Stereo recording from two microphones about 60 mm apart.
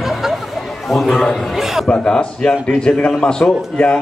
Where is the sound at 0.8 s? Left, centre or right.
Centre.